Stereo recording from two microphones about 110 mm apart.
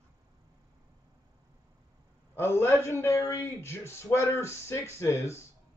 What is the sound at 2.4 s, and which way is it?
A man's voice, 20° left (ahead or behind).